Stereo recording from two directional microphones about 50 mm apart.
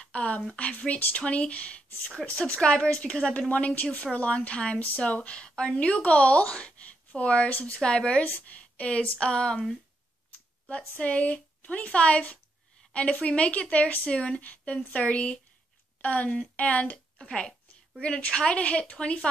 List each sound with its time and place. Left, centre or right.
0.0 s speech: left
11.0 s speech: left
17.2 s speech: centre